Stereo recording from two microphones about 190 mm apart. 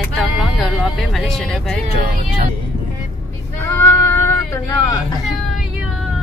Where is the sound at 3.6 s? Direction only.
15° left (ahead or behind).